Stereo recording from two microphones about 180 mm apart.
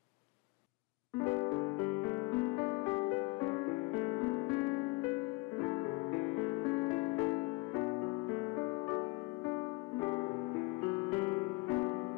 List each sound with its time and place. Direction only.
1.2 s music: 20° left (ahead or behind)